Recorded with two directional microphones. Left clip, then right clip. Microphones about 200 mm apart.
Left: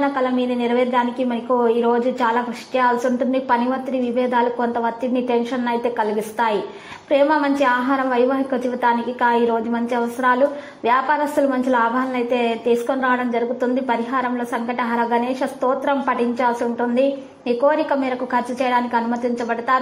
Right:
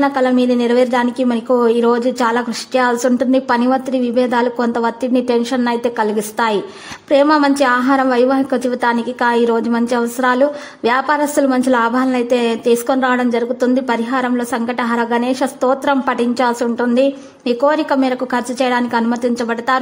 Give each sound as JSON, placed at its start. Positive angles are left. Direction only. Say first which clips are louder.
{"t": 0.0, "sound": "a woman's voice", "louder": "right 5 dB", "side_deg": -35}